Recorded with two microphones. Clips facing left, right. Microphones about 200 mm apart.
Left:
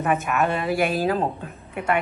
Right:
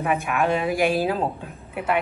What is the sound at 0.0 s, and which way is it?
A woman's voice, centre (ahead or behind).